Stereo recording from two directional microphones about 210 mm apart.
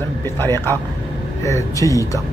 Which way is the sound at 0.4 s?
10° left (ahead or behind).